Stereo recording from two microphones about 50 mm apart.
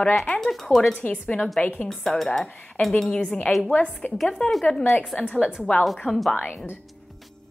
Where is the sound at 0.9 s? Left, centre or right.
Left.